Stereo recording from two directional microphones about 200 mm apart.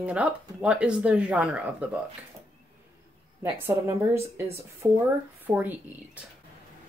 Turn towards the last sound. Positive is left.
turn(degrees=-10)  # may be behind; listen again after turning